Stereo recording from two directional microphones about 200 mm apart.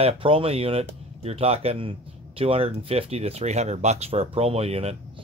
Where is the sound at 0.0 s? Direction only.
30° right (ahead or behind).